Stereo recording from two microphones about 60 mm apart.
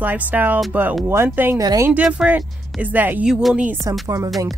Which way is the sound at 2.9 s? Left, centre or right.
Right.